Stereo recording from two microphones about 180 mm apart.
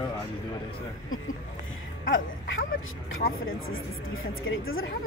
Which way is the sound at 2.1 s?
90° left.